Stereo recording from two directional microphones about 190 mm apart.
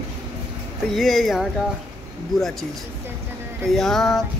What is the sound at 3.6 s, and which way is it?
Music, centre (ahead or behind).